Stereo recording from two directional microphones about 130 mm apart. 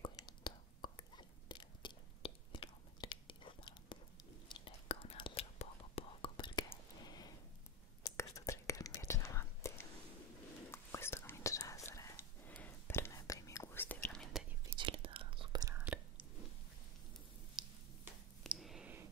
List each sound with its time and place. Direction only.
0.0 s whispering: 35° left (ahead or behind)
7.0 s a sound: 30° left (ahead or behind)
8.0 s whispering: 25° left (ahead or behind); by 14.4 s 5° left (ahead or behind)
14.8 s whispering: 40° right (ahead or behind)
15.7 s whispering: 10° right (ahead or behind)
17.6 s tick-tock: 5° right (ahead or behind)
18.5 s clicking: 5° right (ahead or behind)